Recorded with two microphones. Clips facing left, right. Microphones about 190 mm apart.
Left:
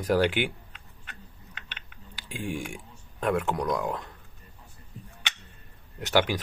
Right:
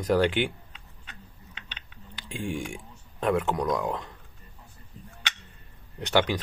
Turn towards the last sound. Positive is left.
turn(degrees=5)  # may be behind; listen again after turning